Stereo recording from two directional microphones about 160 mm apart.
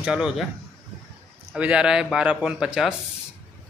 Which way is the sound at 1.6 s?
5° right (ahead or behind).